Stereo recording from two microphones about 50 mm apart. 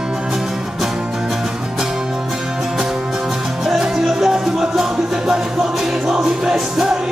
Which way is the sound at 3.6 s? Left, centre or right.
Centre.